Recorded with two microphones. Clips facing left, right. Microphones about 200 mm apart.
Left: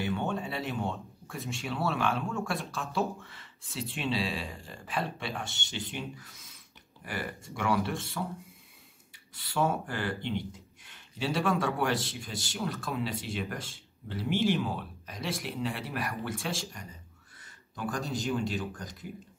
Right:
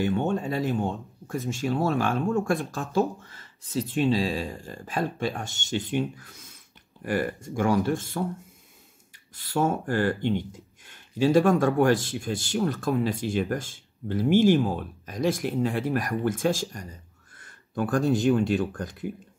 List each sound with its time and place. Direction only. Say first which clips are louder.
0.0 s speech: right 7 dB; 45° right (ahead or behind)
9.5 s speech: right 5 dB; 45° right (ahead or behind)